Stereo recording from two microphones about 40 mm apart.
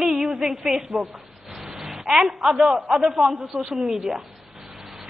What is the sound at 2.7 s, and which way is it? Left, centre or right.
Speech, right.